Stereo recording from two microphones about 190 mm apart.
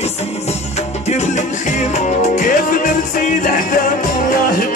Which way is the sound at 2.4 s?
40° left (ahead or behind).